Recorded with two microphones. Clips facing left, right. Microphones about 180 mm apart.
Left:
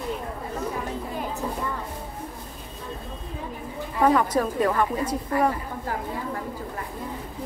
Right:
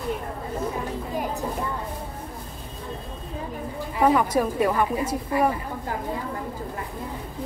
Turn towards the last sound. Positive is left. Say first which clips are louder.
# even
turn(degrees=-10)  # may be behind; listen again after turning